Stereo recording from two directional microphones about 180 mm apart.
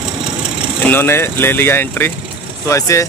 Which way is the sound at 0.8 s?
10° left (ahead or behind).